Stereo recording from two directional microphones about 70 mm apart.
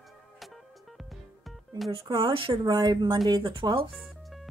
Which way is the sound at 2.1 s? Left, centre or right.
Right.